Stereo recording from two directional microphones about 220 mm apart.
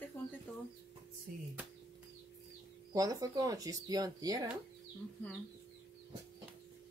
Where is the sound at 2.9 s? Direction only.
15° right (ahead or behind).